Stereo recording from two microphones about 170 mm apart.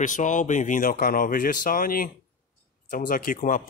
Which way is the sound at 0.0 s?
50° left (ahead or behind).